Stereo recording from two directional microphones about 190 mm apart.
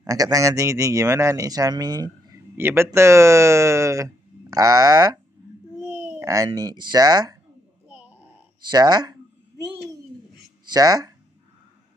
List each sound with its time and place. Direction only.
0.0 s speech: 20° right (ahead or behind)
5.8 s a child's voice: 10° right (ahead or behind)
7.9 s a sound: 10° right (ahead or behind)
8.6 s speech: 20° right (ahead or behind)
10.6 s speech: 20° right (ahead or behind)